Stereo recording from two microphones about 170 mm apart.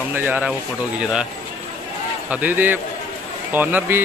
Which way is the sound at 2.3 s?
10° right (ahead or behind).